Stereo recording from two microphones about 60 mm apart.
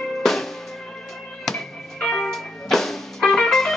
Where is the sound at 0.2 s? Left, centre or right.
Centre.